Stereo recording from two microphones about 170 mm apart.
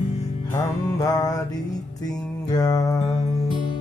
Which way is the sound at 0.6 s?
20° left (ahead or behind).